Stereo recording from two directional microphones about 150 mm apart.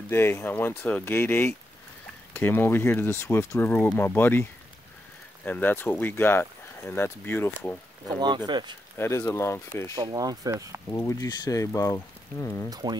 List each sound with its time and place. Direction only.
0.1 s speech: 15° left (ahead or behind)
8.5 s speech: 30° right (ahead or behind)
8.9 s speech: 15° left (ahead or behind)
9.9 s speech: 25° right (ahead or behind)
10.9 s speech: 20° left (ahead or behind)
12.6 s speech: 25° right (ahead or behind)